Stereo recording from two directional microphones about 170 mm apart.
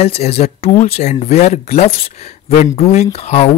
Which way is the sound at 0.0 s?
35° left (ahead or behind).